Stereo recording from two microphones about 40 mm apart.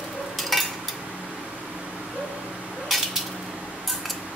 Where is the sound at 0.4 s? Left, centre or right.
Centre.